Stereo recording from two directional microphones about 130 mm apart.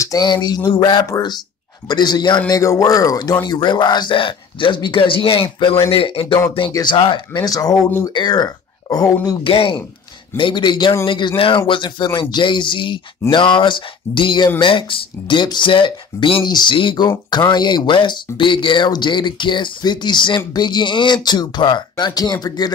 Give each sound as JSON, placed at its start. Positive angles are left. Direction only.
{"t": 0.0, "sound": "speech", "side_deg": 30}
{"t": 9.4, "sound": "speech", "side_deg": 45}